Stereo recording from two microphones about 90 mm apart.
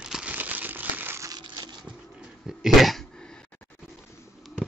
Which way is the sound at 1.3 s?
50° right (ahead or behind).